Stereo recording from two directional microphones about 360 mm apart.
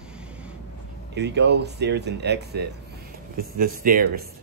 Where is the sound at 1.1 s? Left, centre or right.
Right.